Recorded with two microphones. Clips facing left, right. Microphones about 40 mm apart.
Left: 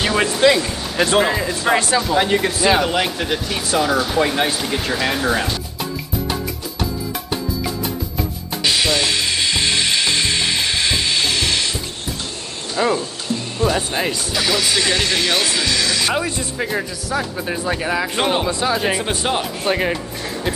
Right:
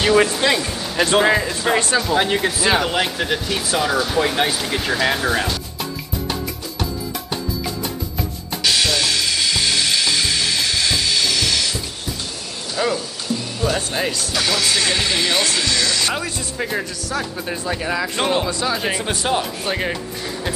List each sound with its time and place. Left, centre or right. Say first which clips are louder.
0.0 s speech: even; centre
8.6 s frying: left 1 dB; centre
12.8 s speech: left 3 dB; centre
14.9 s speech: left 1 dB; centre
15.4 s speech: left 1 dB; centre
18.7 s speech: left 3 dB; centre
19.0 s speech: even; centre